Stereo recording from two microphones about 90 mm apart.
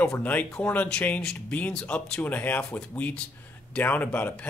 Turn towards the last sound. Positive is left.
turn(degrees=20)  # may be behind; listen again after turning